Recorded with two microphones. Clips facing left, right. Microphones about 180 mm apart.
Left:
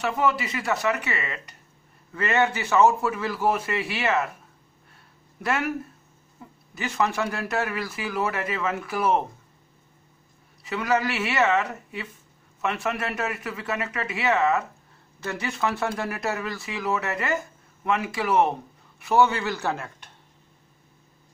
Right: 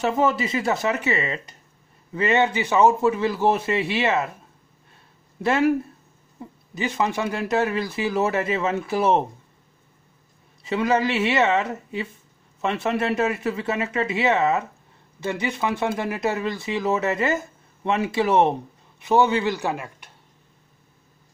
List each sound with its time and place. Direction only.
0.0 s speech: 25° right (ahead or behind)
5.4 s speech: 25° right (ahead or behind)
6.7 s speech: 20° right (ahead or behind)
10.6 s a man's voice: 25° right (ahead or behind)